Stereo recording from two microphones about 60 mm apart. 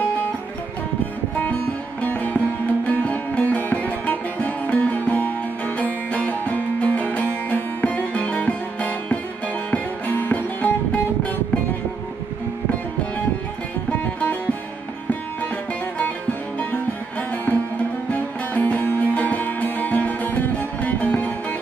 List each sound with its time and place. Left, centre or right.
2.0 s music: left
13.8 s music: left
17.5 s music: left